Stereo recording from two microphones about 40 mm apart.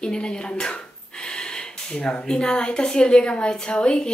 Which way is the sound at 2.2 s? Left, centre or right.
Left.